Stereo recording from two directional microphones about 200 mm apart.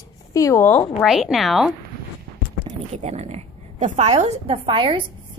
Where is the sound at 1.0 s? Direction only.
Centre (ahead or behind).